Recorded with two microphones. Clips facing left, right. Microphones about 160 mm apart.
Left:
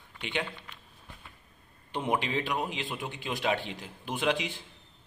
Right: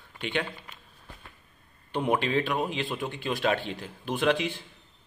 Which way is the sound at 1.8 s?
20° left (ahead or behind).